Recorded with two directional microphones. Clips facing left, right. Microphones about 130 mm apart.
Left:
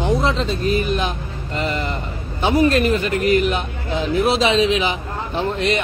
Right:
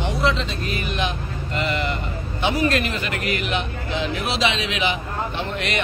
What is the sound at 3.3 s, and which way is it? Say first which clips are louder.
Speech: left 6 dB; 40° left (ahead or behind).